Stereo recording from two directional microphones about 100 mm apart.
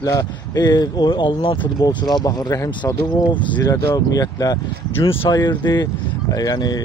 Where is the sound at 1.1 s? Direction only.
55° left (ahead or behind).